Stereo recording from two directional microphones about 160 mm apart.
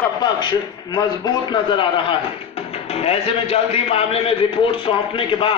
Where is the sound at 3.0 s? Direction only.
40° left (ahead or behind).